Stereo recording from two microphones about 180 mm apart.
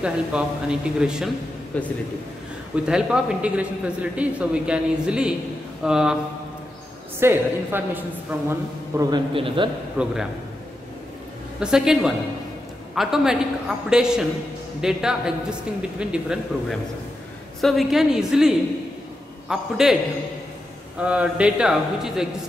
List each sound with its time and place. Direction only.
0.0 s a man's voice: 5° right (ahead or behind)
2.7 s a man's voice: 5° right (ahead or behind)
7.2 s a man's voice: 10° right (ahead or behind)
9.3 s a man's voice: 30° right (ahead or behind)
10.0 s a man's voice: 10° right (ahead or behind)
11.6 s a man's voice: 5° right (ahead or behind)
21.0 s a man's voice: 5° right (ahead or behind)